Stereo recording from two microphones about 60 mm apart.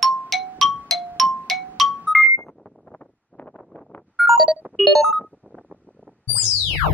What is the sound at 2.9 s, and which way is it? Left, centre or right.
Wind noise, left.